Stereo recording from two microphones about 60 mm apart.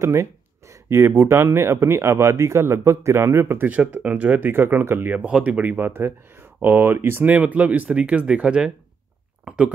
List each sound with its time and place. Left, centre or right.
0.0 s speech: right
3.6 s speech: right
4.5 s speech: right
5.2 s speech: right
7.2 s speech: right